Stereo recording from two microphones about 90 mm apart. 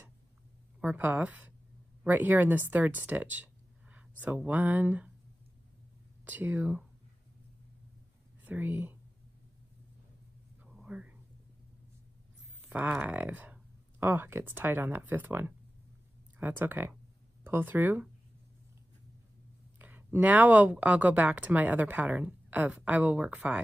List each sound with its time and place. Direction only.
0.7 s a woman's voice: 20° right (ahead or behind)
6.2 s speech: 20° right (ahead or behind)
8.5 s speech: 20° right (ahead or behind)
10.9 s a sound: 15° right (ahead or behind)
12.6 s speech: 15° right (ahead or behind)
19.8 s a woman's voice: 20° right (ahead or behind)